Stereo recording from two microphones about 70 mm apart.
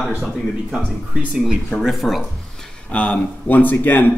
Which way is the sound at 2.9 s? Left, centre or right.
Centre.